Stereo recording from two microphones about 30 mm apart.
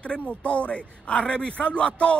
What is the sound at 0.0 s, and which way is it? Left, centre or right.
Speech, left.